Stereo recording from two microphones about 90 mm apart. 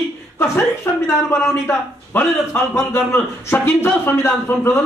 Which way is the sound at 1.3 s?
25° left (ahead or behind).